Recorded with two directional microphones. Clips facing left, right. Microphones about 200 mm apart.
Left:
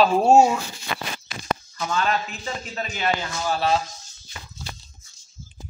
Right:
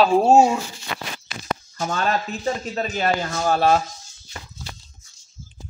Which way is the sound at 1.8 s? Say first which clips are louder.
Right 2 dB; 45° right (ahead or behind).